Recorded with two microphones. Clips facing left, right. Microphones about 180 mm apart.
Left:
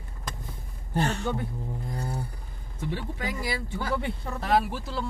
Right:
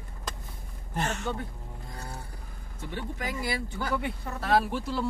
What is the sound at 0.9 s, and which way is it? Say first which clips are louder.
Speech: left 4 dB; 35° left (ahead or behind).